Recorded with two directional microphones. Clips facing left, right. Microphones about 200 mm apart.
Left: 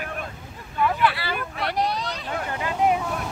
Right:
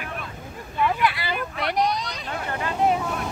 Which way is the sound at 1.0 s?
15° right (ahead or behind).